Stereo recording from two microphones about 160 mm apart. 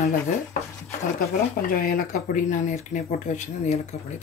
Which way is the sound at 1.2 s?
65° left (ahead or behind).